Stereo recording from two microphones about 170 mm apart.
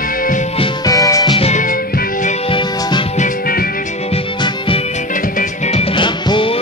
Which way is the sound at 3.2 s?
60° left (ahead or behind).